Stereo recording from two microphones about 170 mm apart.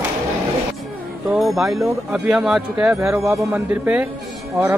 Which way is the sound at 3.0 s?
15° right (ahead or behind).